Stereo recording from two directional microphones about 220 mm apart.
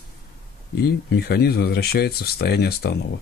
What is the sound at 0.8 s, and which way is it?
Speech, 45° left (ahead or behind).